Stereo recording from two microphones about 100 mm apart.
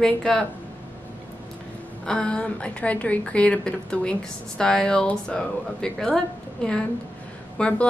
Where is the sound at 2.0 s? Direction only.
10° left (ahead or behind).